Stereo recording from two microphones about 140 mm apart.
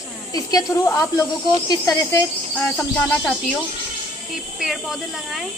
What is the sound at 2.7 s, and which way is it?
Insect, 15° left (ahead or behind).